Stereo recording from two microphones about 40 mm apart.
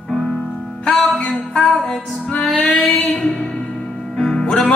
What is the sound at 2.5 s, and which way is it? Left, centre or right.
Female singing, left.